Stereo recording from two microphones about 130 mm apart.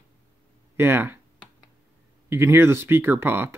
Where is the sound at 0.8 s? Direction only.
15° right (ahead or behind).